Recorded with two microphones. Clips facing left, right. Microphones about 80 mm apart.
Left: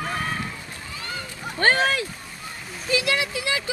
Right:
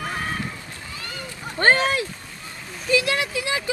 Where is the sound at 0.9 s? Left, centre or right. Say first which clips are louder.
Left 3 dB; left.